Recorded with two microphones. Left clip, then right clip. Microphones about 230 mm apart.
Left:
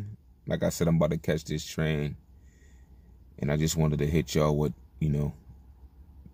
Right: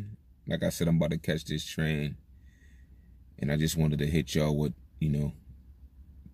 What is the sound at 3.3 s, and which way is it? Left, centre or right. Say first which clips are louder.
Speech: left 2 dB; left.